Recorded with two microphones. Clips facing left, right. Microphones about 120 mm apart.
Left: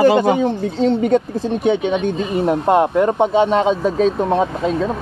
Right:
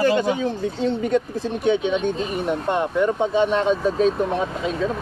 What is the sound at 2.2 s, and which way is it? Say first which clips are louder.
A man's voice: left 6 dB; 90° left.